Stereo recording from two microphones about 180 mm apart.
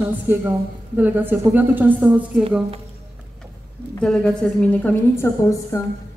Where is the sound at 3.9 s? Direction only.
5° left (ahead or behind).